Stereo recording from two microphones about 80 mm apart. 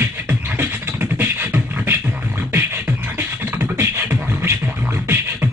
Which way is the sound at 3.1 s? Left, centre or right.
Right.